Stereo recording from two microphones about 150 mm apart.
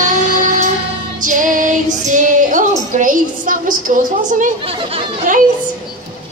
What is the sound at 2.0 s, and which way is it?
Female singing, 55° right (ahead or behind).